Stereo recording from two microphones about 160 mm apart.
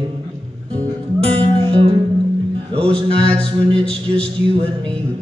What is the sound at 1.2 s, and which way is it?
Music, 35° right (ahead or behind).